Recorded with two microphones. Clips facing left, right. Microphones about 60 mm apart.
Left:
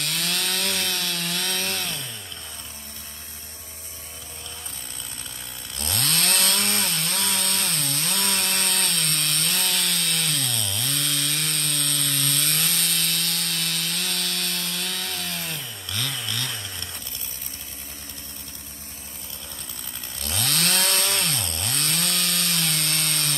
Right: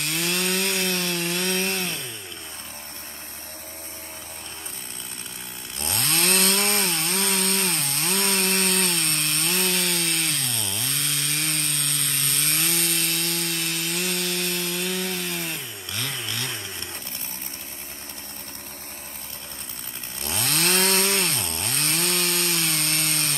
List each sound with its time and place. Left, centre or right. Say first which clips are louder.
0.0 s chainsaw: right 2 dB; right
6.0 s chainsaw: right 3 dB; right
20.2 s chainsaw: right 1 dB; right